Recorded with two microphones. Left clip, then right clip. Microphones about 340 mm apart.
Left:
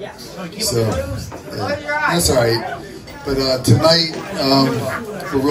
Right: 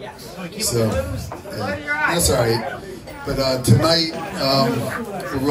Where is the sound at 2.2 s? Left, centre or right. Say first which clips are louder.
Left 3 dB; left.